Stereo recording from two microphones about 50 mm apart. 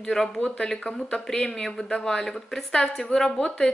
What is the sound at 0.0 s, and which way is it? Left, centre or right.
A woman's voice, centre.